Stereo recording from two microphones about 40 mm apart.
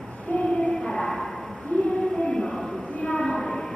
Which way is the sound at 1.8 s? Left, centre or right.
Centre.